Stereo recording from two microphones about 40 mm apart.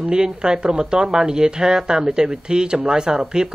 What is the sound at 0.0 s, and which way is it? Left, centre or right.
Speech, right.